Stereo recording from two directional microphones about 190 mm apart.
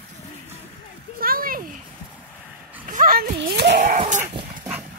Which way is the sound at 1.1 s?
50° right (ahead or behind).